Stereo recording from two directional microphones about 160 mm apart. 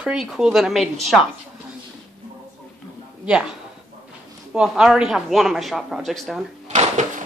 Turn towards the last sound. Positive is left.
turn(degrees=-45)  # may be behind; listen again after turning